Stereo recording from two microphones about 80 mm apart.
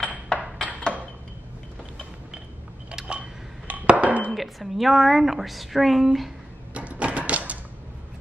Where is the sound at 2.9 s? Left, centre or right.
Centre.